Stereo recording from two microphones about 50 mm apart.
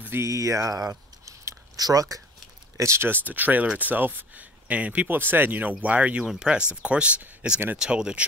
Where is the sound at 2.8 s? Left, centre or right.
Right.